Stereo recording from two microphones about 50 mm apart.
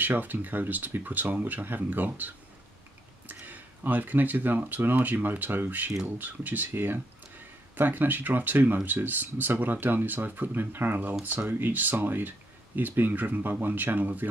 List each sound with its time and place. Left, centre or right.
0.0 s speech: right